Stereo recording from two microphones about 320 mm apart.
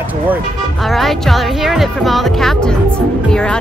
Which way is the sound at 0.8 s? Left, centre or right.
Centre.